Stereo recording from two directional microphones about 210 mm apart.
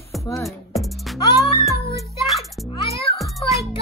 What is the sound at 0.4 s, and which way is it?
Music, centre (ahead or behind).